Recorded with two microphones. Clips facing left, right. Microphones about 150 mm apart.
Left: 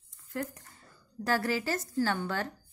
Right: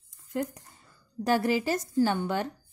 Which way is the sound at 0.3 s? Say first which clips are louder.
Right 5 dB; 20° right (ahead or behind).